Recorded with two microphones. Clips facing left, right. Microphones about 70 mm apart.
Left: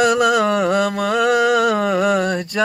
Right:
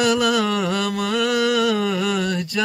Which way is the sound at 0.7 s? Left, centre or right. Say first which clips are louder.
Left 5 dB; left.